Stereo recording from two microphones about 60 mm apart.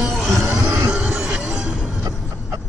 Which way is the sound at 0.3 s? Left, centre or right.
Right.